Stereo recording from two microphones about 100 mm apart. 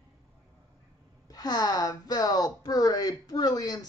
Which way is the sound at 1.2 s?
40° left (ahead or behind).